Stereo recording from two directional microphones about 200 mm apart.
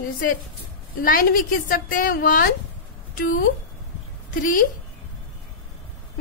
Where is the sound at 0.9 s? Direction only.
45° left (ahead or behind).